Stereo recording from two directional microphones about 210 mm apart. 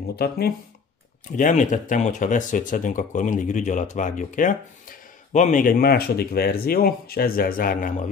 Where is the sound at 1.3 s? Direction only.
35° left (ahead or behind).